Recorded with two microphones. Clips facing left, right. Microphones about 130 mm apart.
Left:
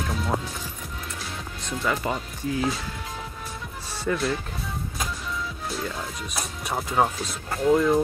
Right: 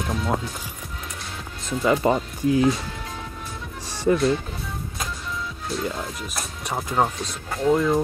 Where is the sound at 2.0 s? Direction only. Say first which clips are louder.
Right 8 dB; 35° right (ahead or behind).